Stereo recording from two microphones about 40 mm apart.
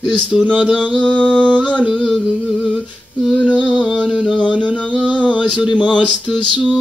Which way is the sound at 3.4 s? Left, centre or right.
Left.